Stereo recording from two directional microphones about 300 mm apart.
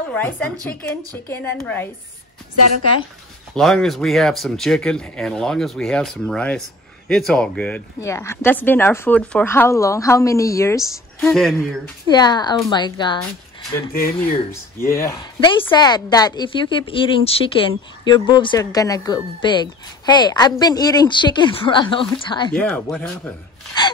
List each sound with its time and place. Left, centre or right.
0.1 s speech: centre
3.5 s speech: centre
12.1 s speech: centre
14.9 s speech: centre